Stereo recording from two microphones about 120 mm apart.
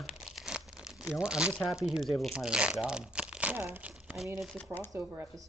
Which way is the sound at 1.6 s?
5° right (ahead or behind).